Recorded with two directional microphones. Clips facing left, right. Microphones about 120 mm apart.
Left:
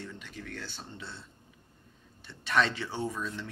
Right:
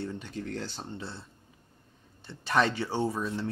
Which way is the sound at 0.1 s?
35° right (ahead or behind).